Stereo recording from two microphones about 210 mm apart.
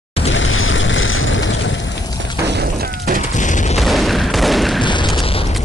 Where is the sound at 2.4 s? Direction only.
50° right (ahead or behind).